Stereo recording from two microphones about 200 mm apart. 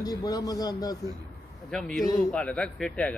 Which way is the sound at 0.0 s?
20° left (ahead or behind).